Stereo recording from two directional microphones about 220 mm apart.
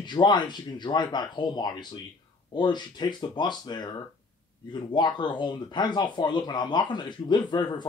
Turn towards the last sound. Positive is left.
turn(degrees=20)  # may be behind; listen again after turning